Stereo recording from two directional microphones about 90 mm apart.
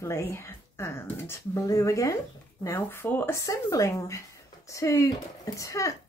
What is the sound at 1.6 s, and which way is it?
Speech, 40° left (ahead or behind).